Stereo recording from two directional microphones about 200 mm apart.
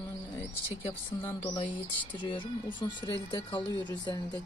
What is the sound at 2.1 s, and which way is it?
Speech, 25° left (ahead or behind).